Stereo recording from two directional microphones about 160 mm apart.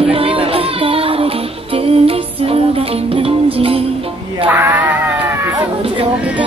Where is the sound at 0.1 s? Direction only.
35° right (ahead or behind).